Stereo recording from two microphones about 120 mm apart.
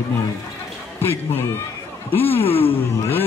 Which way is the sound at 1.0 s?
20° left (ahead or behind).